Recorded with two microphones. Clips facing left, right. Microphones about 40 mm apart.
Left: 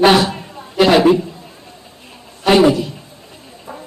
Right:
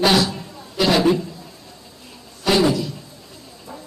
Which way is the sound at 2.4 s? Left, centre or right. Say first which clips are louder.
Left 6 dB; left.